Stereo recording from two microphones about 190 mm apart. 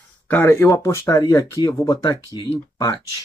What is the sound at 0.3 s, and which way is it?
Speech, 10° left (ahead or behind).